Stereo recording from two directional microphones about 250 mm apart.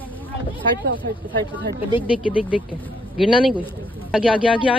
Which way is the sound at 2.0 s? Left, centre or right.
Centre.